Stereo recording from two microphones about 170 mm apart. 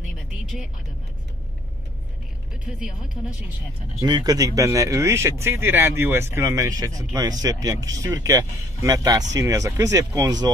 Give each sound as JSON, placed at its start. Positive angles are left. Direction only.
{"t": 4.0, "sound": "speech", "side_deg": -25}